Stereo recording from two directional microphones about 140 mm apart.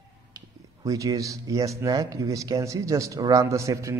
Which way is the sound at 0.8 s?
25° right (ahead or behind).